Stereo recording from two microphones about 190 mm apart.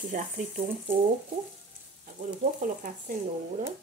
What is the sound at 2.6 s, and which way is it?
Speech, 45° right (ahead or behind).